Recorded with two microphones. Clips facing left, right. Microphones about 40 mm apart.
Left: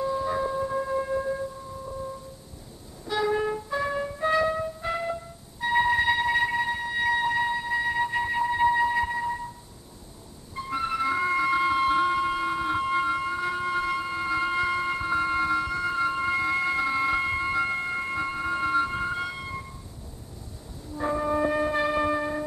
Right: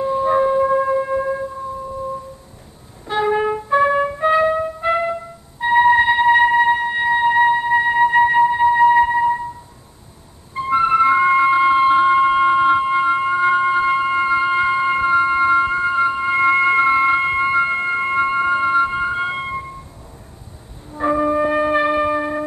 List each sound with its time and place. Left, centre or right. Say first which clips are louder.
0.0 s music: right 10 dB; right
3.1 s music: right 7 dB; right
7.0 s music: right 7 dB; right
8.5 s music: right 8 dB; right
8.8 s music: right 12 dB; right
10.5 s music: right 13 dB; right
12.8 s music: right 9 dB; right
16.3 s music: right 11 dB; right
19.3 s a sound: right 11 dB; right
20.9 s music: right 9 dB; right